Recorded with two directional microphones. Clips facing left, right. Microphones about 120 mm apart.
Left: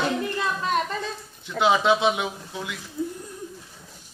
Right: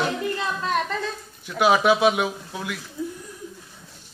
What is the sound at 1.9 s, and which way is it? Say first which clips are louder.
Chuckle: right 2 dB; 20° left (ahead or behind).